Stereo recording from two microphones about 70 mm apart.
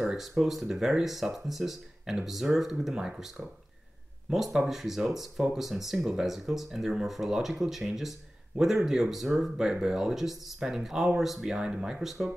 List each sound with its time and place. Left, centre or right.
0.0 s speech: centre